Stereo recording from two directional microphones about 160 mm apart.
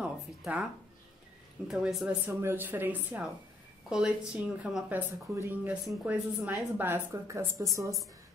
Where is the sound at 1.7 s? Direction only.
5° right (ahead or behind).